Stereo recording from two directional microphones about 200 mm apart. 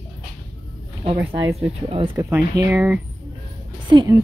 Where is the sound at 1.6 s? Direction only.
25° right (ahead or behind).